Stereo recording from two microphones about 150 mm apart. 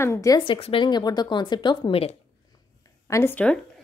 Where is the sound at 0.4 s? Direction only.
40° left (ahead or behind).